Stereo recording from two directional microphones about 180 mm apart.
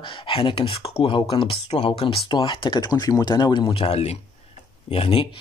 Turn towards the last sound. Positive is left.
turn(degrees=30)  # may be behind; listen again after turning